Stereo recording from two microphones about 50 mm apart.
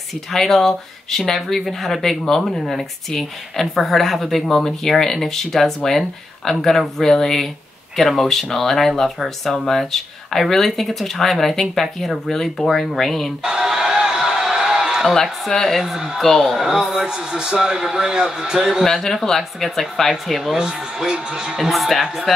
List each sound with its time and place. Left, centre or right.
0.1 s speech: centre
13.4 s a sound: centre
15.8 s a man's voice: centre
16.2 s speech: centre
16.5 s a man's voice: centre
19.2 s a man's voice: centre
21.5 s speech: centre